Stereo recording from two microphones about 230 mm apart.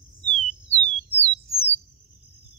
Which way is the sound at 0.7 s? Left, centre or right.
Left.